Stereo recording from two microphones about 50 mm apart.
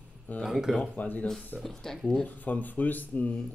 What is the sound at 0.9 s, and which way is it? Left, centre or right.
Speech, left.